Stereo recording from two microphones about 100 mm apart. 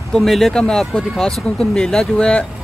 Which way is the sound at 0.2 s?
5° left (ahead or behind).